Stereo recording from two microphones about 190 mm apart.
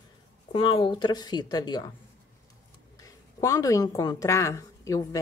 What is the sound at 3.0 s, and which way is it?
A woman's voice, 20° left (ahead or behind).